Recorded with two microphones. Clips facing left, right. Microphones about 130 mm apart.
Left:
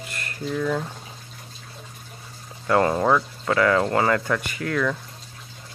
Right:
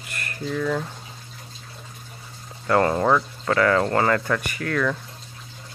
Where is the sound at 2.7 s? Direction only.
10° left (ahead or behind).